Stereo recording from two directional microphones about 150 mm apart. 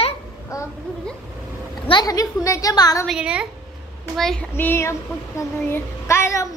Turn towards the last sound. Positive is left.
turn(degrees=20)  # may be behind; listen again after turning